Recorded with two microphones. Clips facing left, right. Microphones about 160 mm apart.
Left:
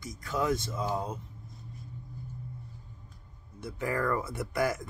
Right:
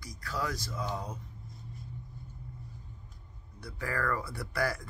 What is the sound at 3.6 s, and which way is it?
Speech, 20° left (ahead or behind).